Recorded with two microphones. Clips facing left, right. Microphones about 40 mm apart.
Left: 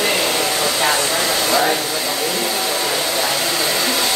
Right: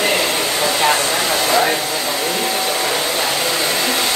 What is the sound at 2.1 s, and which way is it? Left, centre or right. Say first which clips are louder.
Hair dryer: right 2 dB; right.